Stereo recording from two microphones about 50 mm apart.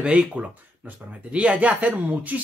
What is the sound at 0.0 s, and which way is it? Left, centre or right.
Speech, right.